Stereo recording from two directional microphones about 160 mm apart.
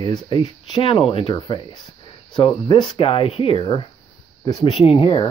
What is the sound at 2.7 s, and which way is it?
Speech, 35° left (ahead or behind).